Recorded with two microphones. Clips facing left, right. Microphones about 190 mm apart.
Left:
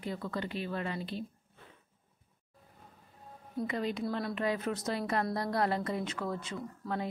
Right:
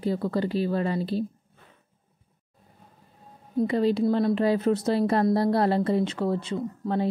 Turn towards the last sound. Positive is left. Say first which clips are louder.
# right 9 dB
turn(degrees=-30)  # may be behind; listen again after turning